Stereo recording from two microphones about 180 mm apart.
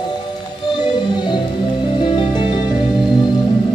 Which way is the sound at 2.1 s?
30° left (ahead or behind).